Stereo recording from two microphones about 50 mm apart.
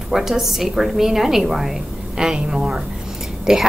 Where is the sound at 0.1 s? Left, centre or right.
Centre.